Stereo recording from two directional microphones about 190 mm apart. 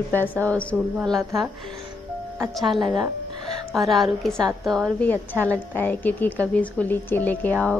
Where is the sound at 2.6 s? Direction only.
Centre (ahead or behind).